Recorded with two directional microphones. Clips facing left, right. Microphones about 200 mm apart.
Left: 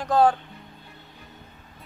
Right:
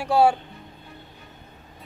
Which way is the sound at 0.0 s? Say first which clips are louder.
Right 1 dB; 10° right (ahead or behind).